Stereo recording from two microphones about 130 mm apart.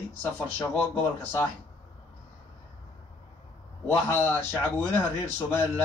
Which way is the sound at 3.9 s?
15° left (ahead or behind).